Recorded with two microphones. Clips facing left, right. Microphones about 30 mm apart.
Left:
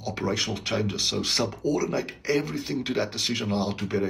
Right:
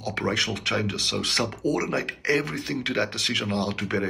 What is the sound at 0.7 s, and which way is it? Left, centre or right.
Speech, right.